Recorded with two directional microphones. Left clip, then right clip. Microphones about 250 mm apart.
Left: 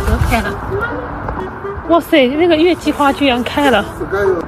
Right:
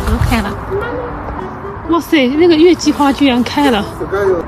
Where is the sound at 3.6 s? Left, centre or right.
Centre.